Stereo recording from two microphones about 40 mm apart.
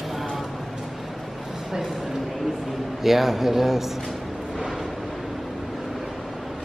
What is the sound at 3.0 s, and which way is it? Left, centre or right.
Speech, centre.